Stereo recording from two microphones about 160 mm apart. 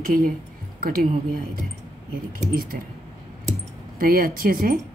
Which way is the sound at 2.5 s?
65° right (ahead or behind).